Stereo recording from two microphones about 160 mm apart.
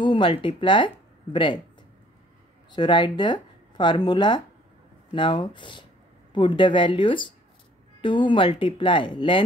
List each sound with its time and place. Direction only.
0.0 s speech: 30° left (ahead or behind)
2.7 s speech: 30° left (ahead or behind)